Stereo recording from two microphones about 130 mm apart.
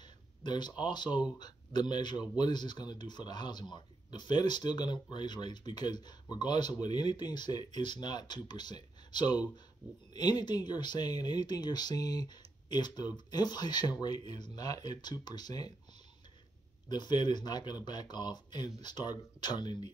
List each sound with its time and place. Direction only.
0.4 s speech: 35° left (ahead or behind)
16.9 s speech: 35° left (ahead or behind)